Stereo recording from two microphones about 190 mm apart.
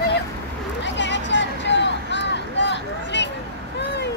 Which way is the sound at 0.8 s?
70° left (ahead or behind).